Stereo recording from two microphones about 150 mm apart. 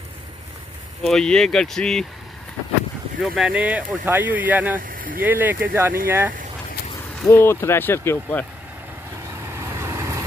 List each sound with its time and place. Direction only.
1.0 s speech: 5° left (ahead or behind)
3.2 s speech: 5° right (ahead or behind)
4.7 s a sound: 65° right (ahead or behind)
5.2 s speech: 15° right (ahead or behind)
7.2 s speech: 15° left (ahead or behind)
9.3 s vehicle: 15° right (ahead or behind)